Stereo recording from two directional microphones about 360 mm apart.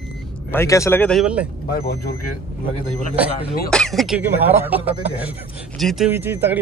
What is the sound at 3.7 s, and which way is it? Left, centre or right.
Speech, centre.